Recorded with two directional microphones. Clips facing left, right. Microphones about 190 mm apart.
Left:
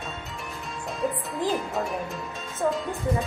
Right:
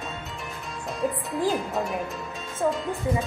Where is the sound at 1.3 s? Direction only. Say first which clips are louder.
Right 2 dB; centre (ahead or behind).